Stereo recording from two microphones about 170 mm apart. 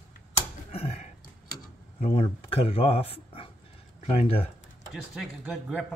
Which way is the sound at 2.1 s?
35° left (ahead or behind).